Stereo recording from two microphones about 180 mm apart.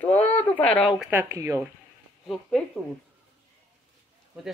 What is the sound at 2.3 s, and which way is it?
Speech, centre (ahead or behind).